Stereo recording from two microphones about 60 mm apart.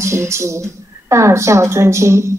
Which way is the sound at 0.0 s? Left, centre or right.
Right.